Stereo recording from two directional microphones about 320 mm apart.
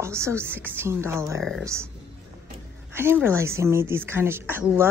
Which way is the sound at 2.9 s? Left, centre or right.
Centre.